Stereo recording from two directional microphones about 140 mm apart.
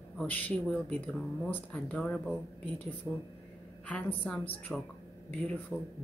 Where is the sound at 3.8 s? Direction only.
10° left (ahead or behind).